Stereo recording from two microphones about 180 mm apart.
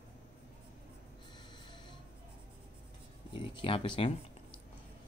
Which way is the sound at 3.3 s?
30° left (ahead or behind).